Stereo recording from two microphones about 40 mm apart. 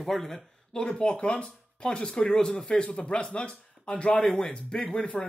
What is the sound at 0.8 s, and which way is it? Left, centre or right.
Speech, left.